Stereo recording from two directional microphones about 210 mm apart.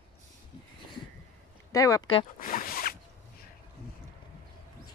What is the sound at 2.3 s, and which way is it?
Zipper, 40° left (ahead or behind).